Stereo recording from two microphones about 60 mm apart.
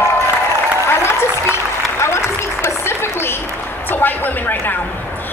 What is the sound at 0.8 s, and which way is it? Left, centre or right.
Applause, left.